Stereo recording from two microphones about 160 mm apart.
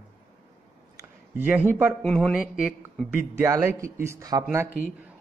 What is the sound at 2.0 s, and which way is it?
Speech, 5° left (ahead or behind).